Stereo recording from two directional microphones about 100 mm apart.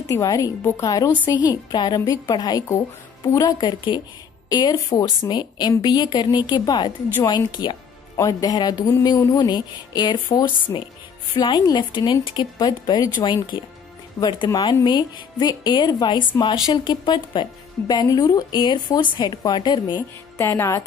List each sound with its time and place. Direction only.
0.0 s a sound: 35° left (ahead or behind)
1.4 s speech: 40° left (ahead or behind)
2.0 s a sound: 40° left (ahead or behind)
3.5 s speech: 50° left (ahead or behind)
8.2 s a sound: 35° left (ahead or behind)
11.3 s speech: 45° left (ahead or behind)
13.5 s speech: 60° left (ahead or behind)
14.2 s speech: 45° left (ahead or behind)
20.3 s speech: 30° left (ahead or behind)